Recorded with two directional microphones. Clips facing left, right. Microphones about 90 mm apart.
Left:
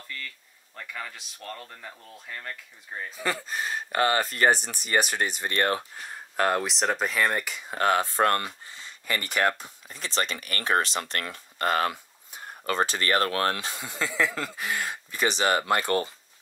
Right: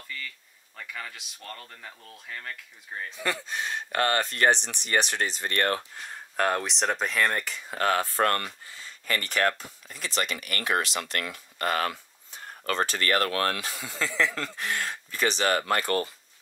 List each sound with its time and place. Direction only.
0.7 s speech: 5° left (ahead or behind)
9.9 s speech: 35° left (ahead or behind)
11.9 s a sound: 15° left (ahead or behind)
13.0 s speech: 25° left (ahead or behind)
14.0 s speech: 5° left (ahead or behind)